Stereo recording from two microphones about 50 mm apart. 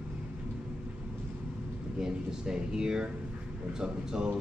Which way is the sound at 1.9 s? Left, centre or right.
Centre.